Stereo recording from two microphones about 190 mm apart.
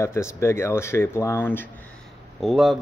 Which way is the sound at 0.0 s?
15° left (ahead or behind).